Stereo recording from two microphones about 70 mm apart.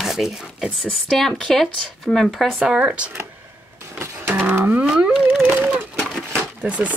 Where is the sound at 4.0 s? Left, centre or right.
Right.